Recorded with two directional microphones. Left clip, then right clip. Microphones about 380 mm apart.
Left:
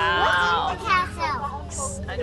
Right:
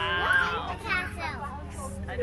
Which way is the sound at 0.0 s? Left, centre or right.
Centre.